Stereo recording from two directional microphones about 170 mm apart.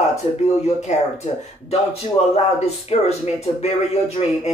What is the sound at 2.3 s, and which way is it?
Speech, 40° left (ahead or behind).